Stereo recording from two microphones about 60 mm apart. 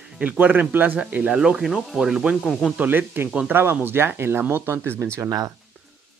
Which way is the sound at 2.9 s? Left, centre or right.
Right.